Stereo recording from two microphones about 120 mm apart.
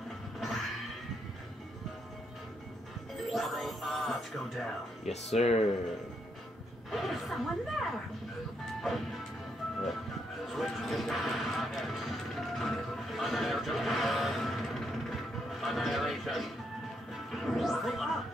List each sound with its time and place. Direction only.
0.4 s music: centre (ahead or behind)
3.3 s music: centre (ahead or behind)
5.0 s speech: 65° left (ahead or behind)
6.9 s speech: centre (ahead or behind)
10.4 s speech: centre (ahead or behind)
17.1 s music: centre (ahead or behind)